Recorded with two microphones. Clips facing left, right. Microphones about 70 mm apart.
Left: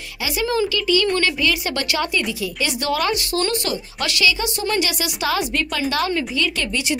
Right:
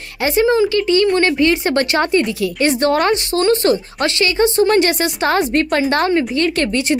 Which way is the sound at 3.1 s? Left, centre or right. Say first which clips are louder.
Right 7 dB; right.